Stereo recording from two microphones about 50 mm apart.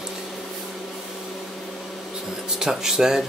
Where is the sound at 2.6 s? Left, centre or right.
Centre.